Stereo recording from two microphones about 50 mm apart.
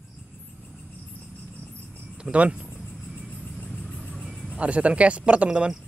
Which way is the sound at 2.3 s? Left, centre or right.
Centre.